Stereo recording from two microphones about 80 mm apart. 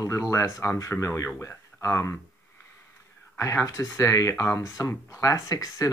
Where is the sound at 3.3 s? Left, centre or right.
Left.